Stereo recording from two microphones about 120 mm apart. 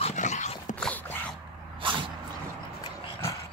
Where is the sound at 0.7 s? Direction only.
10° left (ahead or behind).